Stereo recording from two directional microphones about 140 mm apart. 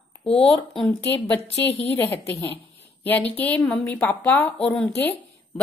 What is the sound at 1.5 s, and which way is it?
Speech, 45° left (ahead or behind).